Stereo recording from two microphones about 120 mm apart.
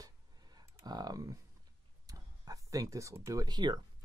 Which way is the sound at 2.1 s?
30° right (ahead or behind).